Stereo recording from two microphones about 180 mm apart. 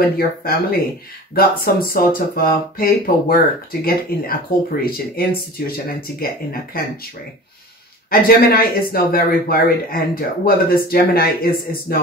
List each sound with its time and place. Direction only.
0.0 s speech: 55° left (ahead or behind)
8.1 s speech: 55° left (ahead or behind)